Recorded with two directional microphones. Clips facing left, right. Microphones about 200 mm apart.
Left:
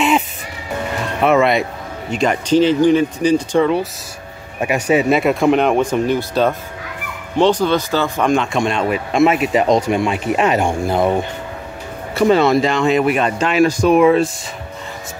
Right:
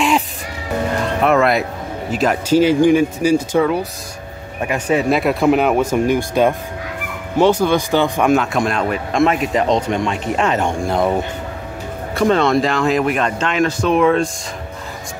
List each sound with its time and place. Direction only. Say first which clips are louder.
1.2 s speech: left 2 dB; centre (ahead or behind)
4.6 s speech: left 2 dB; 10° left (ahead or behind); by 8.3 s 15° right (ahead or behind)
8.3 s speech: right 1 dB; 5° right (ahead or behind)